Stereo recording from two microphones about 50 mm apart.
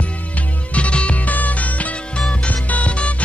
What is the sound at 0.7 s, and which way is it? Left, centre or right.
Music, left.